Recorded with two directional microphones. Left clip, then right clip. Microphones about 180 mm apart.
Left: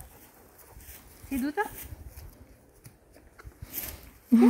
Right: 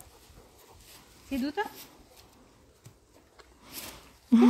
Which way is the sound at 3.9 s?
10° left (ahead or behind).